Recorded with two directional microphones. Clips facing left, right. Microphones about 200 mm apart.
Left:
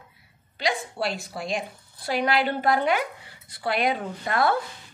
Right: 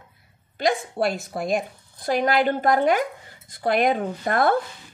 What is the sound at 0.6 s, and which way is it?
A woman's voice, 50° right (ahead or behind).